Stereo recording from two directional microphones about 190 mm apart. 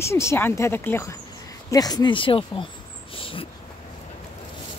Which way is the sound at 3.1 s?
30° left (ahead or behind).